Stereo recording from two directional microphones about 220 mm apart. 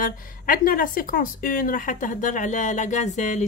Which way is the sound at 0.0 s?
40° left (ahead or behind).